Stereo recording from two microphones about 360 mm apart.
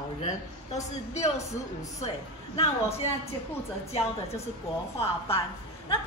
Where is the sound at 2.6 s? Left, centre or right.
Centre.